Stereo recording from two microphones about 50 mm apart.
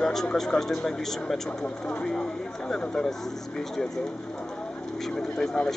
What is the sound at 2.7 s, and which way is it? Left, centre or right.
Speech, centre.